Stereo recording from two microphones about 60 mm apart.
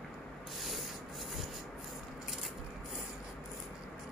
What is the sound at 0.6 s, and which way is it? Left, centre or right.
Rub, centre.